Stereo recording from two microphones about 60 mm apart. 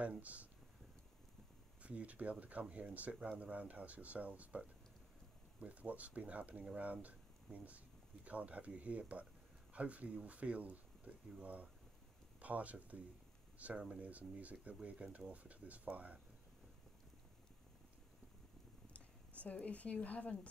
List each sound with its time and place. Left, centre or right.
0.0 s speech: right
1.8 s speech: right
18.9 s speech: left